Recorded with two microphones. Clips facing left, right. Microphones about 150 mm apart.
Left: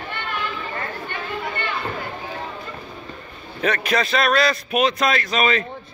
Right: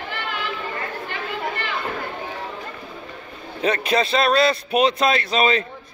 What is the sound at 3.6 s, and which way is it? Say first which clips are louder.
A man's voice: right 1 dB; 30° right (ahead or behind).